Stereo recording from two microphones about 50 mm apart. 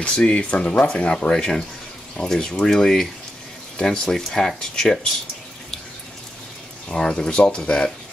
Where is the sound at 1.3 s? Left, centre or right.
Centre.